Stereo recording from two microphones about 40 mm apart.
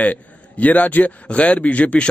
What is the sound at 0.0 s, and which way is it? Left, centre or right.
A man's voice, left.